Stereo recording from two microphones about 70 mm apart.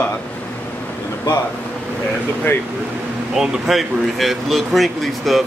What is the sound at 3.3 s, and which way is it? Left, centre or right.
Speech, centre.